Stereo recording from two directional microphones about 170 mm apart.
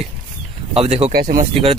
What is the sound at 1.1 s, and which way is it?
Speech, 60° right (ahead or behind).